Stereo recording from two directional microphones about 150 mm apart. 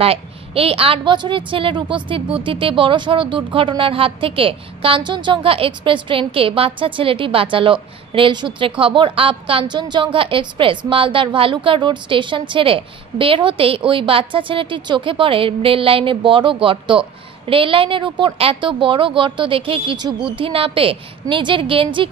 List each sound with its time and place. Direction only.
0.0 s a woman's voice: 40° right (ahead or behind)